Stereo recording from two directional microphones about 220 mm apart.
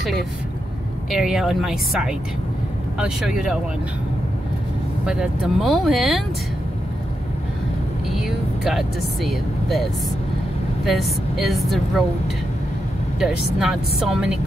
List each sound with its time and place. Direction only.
1.1 s speech: centre (ahead or behind)
5.0 s speech: 5° right (ahead or behind)
8.2 s a woman's voice: centre (ahead or behind)
13.2 s speech: centre (ahead or behind)